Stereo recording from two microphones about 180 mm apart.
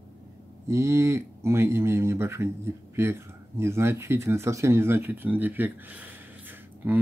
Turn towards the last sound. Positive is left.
turn(degrees=-10)  # may be behind; listen again after turning